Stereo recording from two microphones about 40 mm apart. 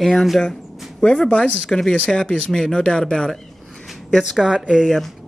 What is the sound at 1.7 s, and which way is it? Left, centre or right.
Speech, centre.